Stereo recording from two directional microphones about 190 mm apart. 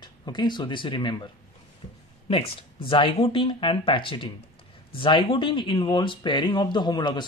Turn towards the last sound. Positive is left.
turn(degrees=25)  # may be behind; listen again after turning